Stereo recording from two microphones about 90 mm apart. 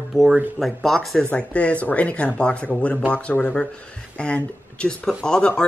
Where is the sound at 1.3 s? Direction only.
15° left (ahead or behind).